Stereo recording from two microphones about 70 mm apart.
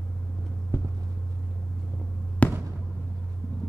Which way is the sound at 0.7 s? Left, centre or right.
Left.